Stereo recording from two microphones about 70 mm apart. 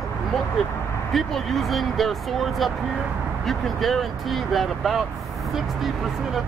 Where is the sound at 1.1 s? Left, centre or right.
Centre.